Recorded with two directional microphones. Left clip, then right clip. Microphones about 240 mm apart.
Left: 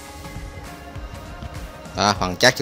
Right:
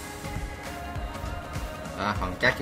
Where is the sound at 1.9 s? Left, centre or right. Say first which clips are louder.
Left 10 dB; left.